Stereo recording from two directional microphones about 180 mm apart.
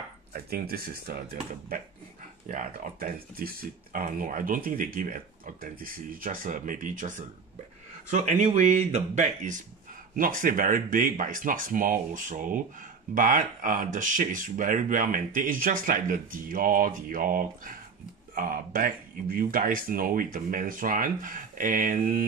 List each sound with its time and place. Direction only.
0.3 s speech: 55° right (ahead or behind)